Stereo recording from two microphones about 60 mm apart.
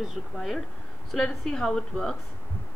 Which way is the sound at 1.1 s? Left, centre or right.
Centre.